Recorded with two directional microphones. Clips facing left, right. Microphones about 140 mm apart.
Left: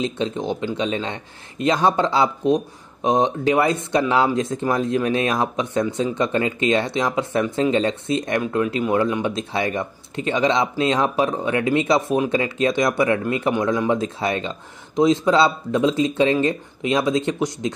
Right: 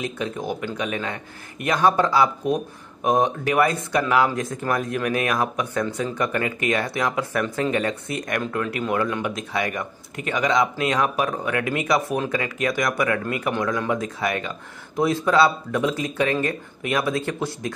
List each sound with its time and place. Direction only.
0.0 s speech: 25° left (ahead or behind)